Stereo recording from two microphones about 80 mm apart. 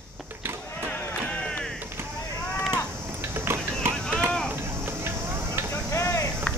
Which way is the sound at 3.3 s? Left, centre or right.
Right.